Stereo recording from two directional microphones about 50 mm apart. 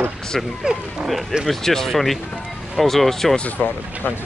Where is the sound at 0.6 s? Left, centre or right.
Centre.